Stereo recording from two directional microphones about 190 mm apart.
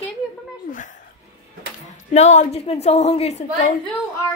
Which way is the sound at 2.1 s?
35° left (ahead or behind).